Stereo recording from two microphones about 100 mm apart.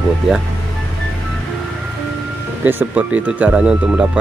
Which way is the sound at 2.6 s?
15° right (ahead or behind).